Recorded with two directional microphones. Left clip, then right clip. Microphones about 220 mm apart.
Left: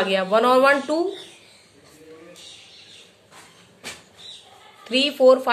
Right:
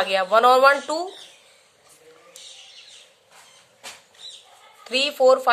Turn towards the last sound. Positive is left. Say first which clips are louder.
# left 2 dB
turn(degrees=-30)  # may be behind; listen again after turning